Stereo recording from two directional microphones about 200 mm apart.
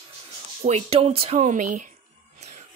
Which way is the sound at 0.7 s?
30° right (ahead or behind).